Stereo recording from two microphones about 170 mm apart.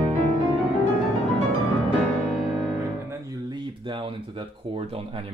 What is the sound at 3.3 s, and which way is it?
Speech, 25° right (ahead or behind).